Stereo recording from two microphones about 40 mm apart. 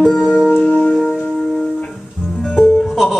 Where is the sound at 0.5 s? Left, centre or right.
Left.